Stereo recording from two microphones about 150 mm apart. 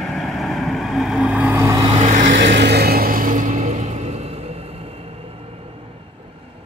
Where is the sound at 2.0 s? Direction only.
55° right (ahead or behind).